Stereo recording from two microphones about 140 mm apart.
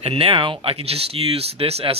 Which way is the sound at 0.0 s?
45° right (ahead or behind).